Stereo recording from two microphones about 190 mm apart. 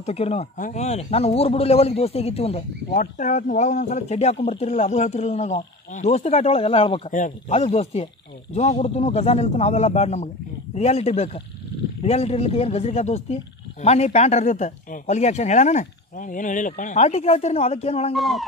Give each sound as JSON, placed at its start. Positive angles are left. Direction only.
{"t": 0.0, "sound": "speech", "side_deg": 35}
{"t": 7.1, "sound": "speech", "side_deg": 40}
{"t": 18.1, "sound": "speech", "side_deg": 0}